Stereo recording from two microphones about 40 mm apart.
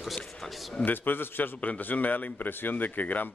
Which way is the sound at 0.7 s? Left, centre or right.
Left.